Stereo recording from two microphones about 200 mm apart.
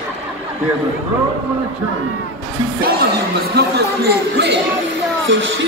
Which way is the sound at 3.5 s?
55° right (ahead or behind).